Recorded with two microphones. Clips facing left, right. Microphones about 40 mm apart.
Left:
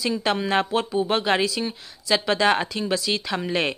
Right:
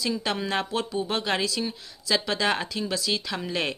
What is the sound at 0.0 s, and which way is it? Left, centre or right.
Speech, centre.